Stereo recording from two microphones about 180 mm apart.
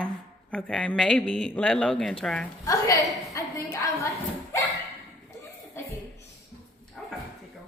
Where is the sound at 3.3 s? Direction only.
15° left (ahead or behind).